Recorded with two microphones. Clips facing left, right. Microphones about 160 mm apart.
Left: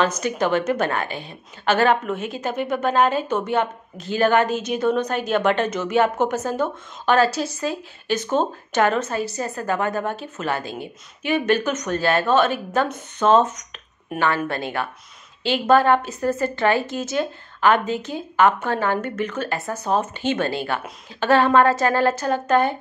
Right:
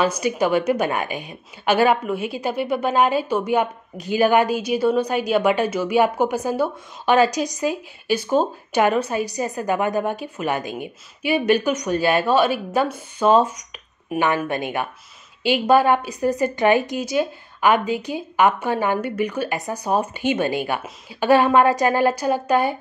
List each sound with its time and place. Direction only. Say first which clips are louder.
0.0 s a woman's voice: right 1 dB; 10° right (ahead or behind)